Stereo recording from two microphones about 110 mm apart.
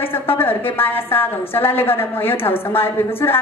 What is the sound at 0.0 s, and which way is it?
A woman's voice, 20° left (ahead or behind).